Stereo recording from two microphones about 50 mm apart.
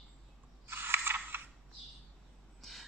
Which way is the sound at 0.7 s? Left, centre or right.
Right.